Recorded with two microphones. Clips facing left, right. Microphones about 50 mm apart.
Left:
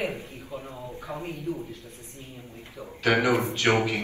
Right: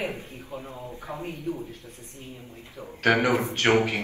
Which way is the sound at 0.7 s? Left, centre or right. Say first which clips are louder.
Even; right.